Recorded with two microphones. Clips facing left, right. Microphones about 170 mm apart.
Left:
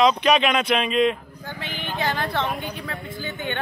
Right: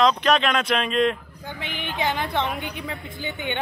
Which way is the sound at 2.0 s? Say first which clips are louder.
Even; 15° right (ahead or behind).